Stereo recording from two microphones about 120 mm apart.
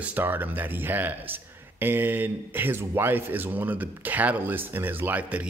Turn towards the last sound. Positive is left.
turn(degrees=-10)  # may be behind; listen again after turning